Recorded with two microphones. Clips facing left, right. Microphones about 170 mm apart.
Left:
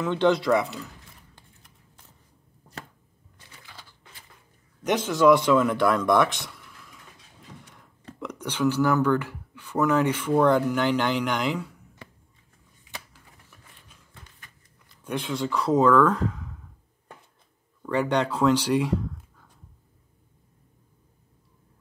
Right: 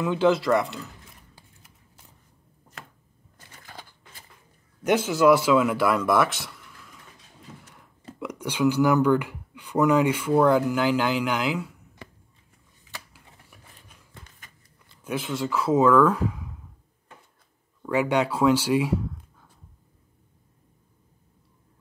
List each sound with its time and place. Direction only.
0.0 s speech: 5° right (ahead or behind)
3.3 s typewriter: 45° right (ahead or behind)
4.8 s speech: 5° right (ahead or behind)
7.6 s speech: 5° right (ahead or behind)
15.0 s speech: 5° right (ahead or behind)
17.8 s speech: 10° right (ahead or behind)